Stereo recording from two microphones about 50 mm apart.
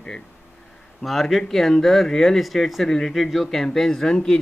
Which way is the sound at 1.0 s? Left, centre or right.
Centre.